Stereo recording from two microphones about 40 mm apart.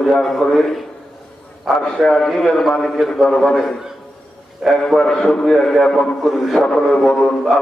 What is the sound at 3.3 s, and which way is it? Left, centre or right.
Speech, left.